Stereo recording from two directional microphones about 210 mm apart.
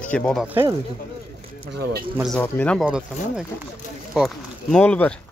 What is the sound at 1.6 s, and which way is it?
Speech, 45° right (ahead or behind).